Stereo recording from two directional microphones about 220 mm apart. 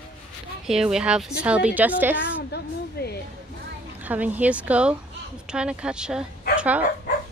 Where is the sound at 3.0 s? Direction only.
45° left (ahead or behind).